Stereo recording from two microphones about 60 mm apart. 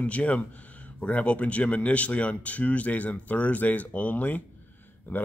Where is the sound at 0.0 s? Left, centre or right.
Left.